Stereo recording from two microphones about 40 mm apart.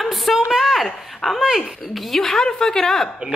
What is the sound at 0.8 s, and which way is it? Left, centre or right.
A woman's voice, centre.